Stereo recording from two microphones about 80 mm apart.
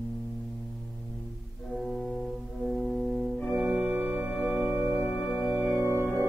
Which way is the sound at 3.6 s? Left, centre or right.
Centre.